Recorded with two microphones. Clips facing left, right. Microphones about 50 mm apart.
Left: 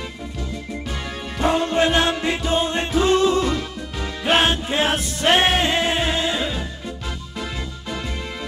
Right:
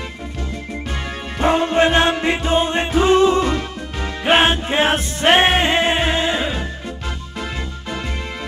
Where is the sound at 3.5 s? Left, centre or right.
Right.